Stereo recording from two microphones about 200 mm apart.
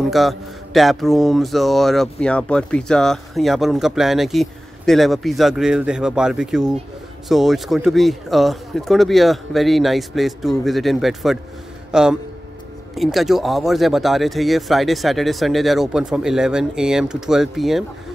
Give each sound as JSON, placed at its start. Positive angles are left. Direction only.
{"t": 0.1, "sound": "a man's voice", "side_deg": 0}